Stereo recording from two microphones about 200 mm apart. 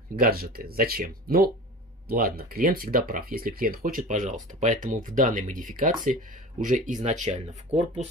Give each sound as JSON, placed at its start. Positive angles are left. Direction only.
{"t": 0.1, "sound": "speech", "side_deg": -45}